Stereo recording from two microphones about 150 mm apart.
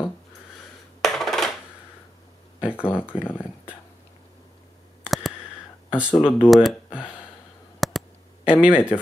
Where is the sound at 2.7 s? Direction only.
15° left (ahead or behind).